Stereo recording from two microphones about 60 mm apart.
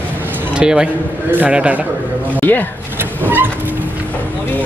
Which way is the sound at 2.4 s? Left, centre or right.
Left.